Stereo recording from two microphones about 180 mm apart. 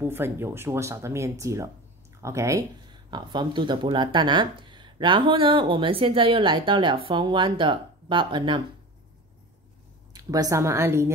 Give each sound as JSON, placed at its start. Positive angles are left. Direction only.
{"t": 0.0, "sound": "speech", "side_deg": -15}
{"t": 10.1, "sound": "speech", "side_deg": -20}